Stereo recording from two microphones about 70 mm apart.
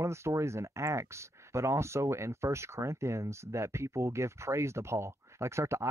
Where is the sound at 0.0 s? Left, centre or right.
Right.